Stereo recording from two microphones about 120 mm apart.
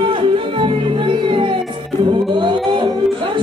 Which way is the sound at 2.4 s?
45° right (ahead or behind).